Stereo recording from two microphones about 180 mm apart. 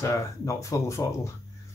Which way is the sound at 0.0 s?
15° left (ahead or behind).